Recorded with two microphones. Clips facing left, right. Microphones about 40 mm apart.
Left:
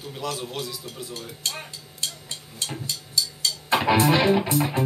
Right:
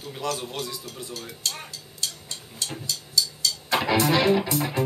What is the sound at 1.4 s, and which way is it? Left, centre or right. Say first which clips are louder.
Music: left 1 dB; left.